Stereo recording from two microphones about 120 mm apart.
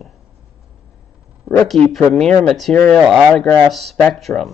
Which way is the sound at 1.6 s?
Centre (ahead or behind).